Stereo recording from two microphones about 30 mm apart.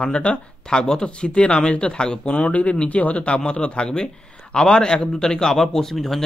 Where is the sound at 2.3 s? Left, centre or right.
Left.